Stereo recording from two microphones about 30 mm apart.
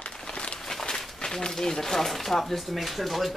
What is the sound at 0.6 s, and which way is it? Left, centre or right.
Walk, centre.